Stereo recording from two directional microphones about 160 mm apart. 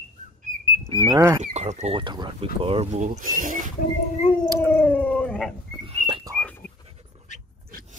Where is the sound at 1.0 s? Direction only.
20° right (ahead or behind).